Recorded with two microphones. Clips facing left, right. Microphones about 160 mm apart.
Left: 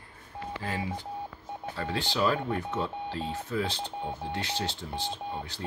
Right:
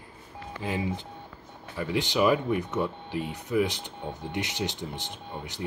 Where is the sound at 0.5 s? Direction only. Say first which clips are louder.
Right 4 dB; 20° right (ahead or behind).